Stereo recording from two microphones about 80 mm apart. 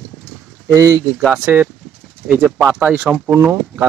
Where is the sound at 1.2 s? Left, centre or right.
Centre.